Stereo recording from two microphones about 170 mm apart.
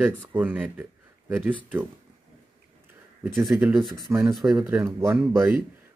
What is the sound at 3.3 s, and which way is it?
Speech, centre (ahead or behind).